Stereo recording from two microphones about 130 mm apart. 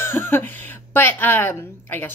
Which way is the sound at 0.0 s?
20° left (ahead or behind).